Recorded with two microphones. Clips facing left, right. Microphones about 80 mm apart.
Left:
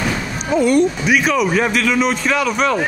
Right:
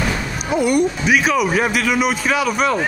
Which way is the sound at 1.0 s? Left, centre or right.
Centre.